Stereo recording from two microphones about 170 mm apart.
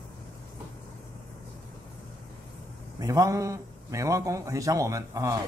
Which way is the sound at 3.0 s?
20° right (ahead or behind).